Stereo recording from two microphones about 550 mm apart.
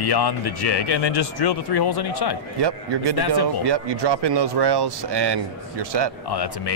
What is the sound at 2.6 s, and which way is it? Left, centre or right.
Speech, right.